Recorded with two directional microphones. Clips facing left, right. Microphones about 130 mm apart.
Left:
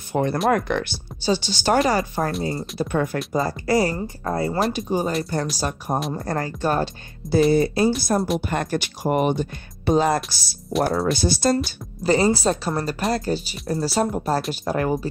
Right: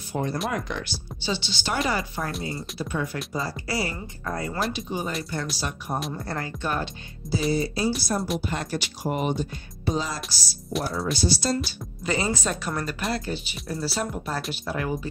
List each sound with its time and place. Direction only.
0.1 s speech: 65° left (ahead or behind)
1.2 s speech: 40° left (ahead or behind)
2.5 s speech: 50° left (ahead or behind); by 4.6 s 30° left (ahead or behind)
4.7 s speech: 45° left (ahead or behind)
7.5 s speech: 55° left (ahead or behind)